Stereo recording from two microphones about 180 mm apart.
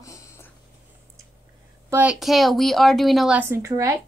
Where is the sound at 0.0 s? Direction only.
20° left (ahead or behind).